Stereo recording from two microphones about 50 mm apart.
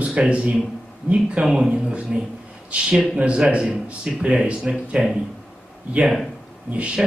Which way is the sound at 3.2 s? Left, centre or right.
Right.